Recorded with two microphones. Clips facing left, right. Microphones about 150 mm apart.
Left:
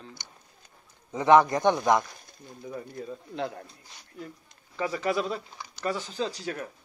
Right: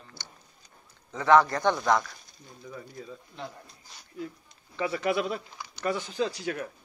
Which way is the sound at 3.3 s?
75° left (ahead or behind).